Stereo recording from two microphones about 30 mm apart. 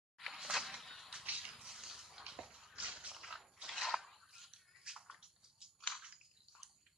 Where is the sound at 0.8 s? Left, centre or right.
Centre.